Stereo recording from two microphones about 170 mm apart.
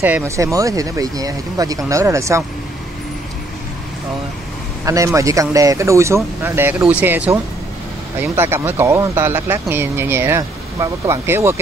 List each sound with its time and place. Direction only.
0.0 s speech: 15° right (ahead or behind)
4.8 s speech: 20° right (ahead or behind)